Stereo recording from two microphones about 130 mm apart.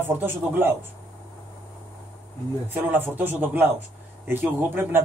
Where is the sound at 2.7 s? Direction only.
15° right (ahead or behind).